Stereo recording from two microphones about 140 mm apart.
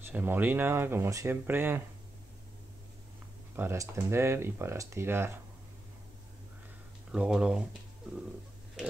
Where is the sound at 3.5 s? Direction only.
15° right (ahead or behind).